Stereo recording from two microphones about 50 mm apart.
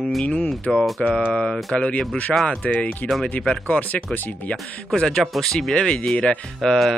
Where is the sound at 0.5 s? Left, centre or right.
Centre.